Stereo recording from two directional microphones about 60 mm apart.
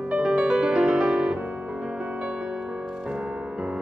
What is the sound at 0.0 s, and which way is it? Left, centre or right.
Music, centre.